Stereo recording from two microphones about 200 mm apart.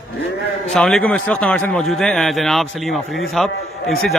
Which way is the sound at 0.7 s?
5° left (ahead or behind).